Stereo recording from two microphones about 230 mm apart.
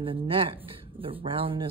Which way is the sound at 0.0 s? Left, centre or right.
Right.